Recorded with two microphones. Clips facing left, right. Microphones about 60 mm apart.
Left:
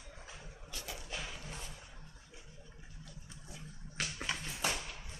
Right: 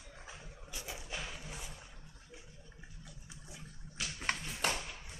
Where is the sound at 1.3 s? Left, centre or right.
Centre.